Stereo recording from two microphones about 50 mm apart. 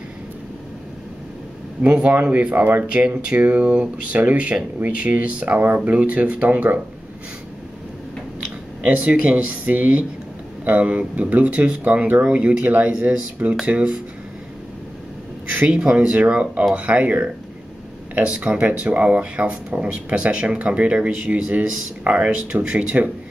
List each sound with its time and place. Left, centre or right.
2.3 s speech: right
2.9 s speech: right
8.8 s speech: right
15.6 s speech: right
18.5 s speech: right